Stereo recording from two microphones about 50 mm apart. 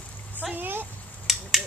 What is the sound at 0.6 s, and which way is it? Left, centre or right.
Speech, right.